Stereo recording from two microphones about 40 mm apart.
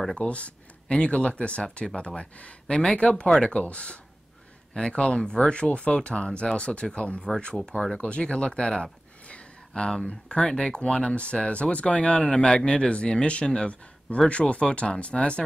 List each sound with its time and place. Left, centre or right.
0.2 s speech: left
10.0 s speech: left